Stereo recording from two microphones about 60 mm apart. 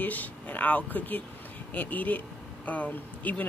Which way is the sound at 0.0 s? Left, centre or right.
Left.